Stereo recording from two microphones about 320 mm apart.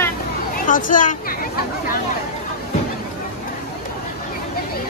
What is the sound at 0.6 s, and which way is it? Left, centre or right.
Speech, left.